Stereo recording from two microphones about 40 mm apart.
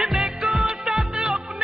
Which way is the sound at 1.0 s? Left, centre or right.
Centre.